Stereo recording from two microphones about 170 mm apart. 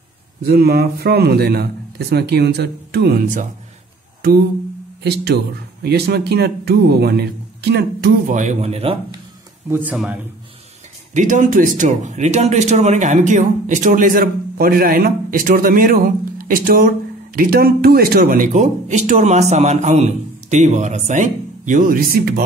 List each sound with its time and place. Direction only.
0.4 s a man's voice: 65° right (ahead or behind)
5.0 s a man's voice: 70° right (ahead or behind)
8.3 s a man's voice: 45° right (ahead or behind)
9.7 s speech: 10° right (ahead or behind)
11.1 s speech: 50° right (ahead or behind)